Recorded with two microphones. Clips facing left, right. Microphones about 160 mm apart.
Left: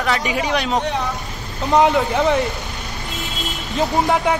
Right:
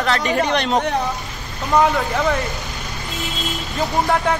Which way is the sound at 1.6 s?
20° left (ahead or behind).